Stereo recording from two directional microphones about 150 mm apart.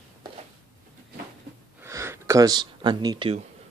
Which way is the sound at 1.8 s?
20° right (ahead or behind).